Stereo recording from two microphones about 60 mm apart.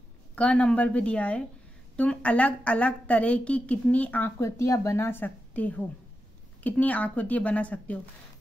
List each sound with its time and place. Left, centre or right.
0.4 s a woman's voice: centre
4.4 s speech: left
4.9 s a woman's voice: left